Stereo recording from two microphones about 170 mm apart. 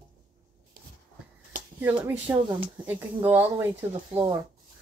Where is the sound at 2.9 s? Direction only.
10° right (ahead or behind).